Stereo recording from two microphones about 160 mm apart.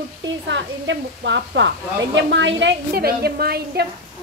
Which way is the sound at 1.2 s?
90° right.